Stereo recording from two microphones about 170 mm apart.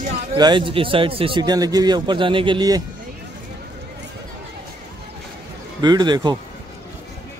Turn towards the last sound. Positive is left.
turn(degrees=-25)  # may be behind; listen again after turning